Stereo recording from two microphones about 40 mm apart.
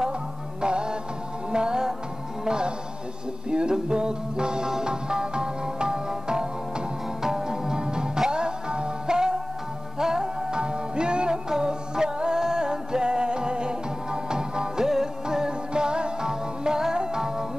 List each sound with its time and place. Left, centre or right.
0.6 s music: right